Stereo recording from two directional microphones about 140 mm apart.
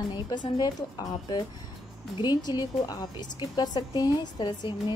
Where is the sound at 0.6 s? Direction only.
25° left (ahead or behind).